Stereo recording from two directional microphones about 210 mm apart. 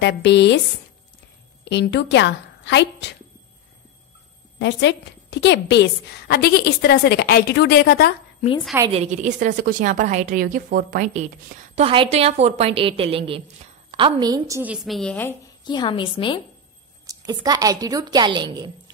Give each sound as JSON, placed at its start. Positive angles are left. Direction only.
{"t": 0.0, "sound": "speech", "side_deg": 55}
{"t": 1.6, "sound": "a woman's voice", "side_deg": 55}
{"t": 4.6, "sound": "a woman's voice", "side_deg": 55}
{"t": 8.9, "sound": "a woman's voice", "side_deg": -35}
{"t": 14.6, "sound": "a woman's voice", "side_deg": -5}
{"t": 15.6, "sound": "a woman's voice", "side_deg": 20}
{"t": 17.0, "sound": "a woman's voice", "side_deg": -15}